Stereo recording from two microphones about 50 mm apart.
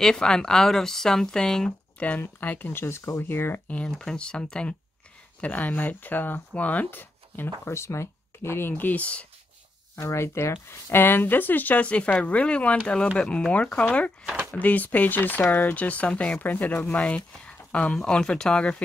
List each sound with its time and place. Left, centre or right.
0.0 s speech: centre
2.0 s speech: left
2.8 s speech: left
3.6 s speech: left
5.4 s speech: left
6.9 s speech: left
7.6 s speech: left
8.7 s speech: left
10.0 s speech: left
11.8 s speech: left
16.3 s speech: left
17.0 s speech: left